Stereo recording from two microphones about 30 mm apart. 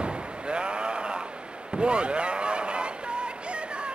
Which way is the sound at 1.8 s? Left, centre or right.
Right.